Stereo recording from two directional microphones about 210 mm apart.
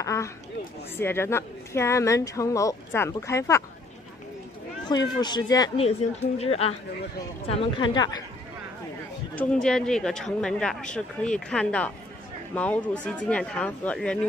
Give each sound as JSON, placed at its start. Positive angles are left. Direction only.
{"t": 0.0, "sound": "a sound", "side_deg": 15}
{"t": 0.9, "sound": "speech", "side_deg": 10}
{"t": 4.8, "sound": "speech", "side_deg": 20}
{"t": 9.3, "sound": "speech", "side_deg": 5}